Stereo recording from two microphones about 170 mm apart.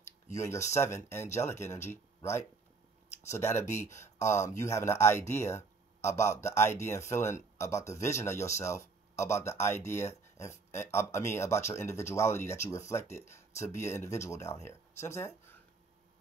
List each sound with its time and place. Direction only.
0.3 s speech: 15° left (ahead or behind)
5.6 s a sound: 40° left (ahead or behind)
6.4 s speech: 15° left (ahead or behind)